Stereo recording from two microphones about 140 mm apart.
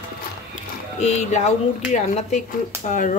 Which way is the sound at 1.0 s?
55° left (ahead or behind).